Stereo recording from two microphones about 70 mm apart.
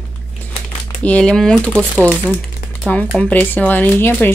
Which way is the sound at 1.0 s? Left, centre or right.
Centre.